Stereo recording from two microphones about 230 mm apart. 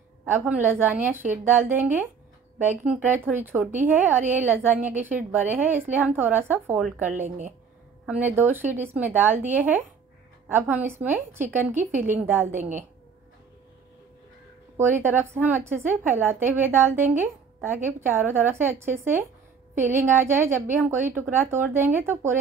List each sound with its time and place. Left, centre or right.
0.2 s a woman's voice: centre
7.2 s a woman's voice: right
8.1 s a woman's voice: centre
14.8 s a woman's voice: centre